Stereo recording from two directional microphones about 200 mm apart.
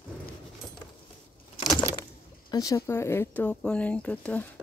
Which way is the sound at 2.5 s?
15° left (ahead or behind).